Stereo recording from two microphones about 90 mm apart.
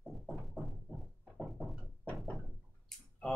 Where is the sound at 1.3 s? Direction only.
Centre (ahead or behind).